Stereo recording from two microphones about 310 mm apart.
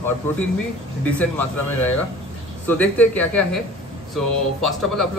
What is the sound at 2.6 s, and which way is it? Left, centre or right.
A man's voice, centre.